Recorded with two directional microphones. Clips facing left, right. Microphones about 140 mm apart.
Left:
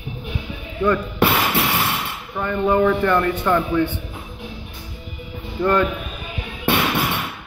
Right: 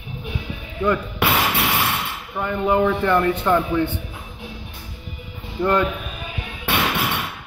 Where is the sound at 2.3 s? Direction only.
10° right (ahead or behind).